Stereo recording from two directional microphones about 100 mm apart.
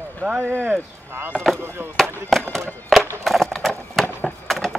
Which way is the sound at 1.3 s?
5° left (ahead or behind).